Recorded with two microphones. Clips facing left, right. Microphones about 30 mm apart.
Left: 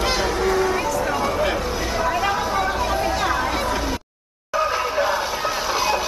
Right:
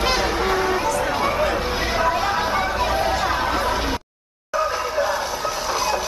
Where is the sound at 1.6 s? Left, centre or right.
Right.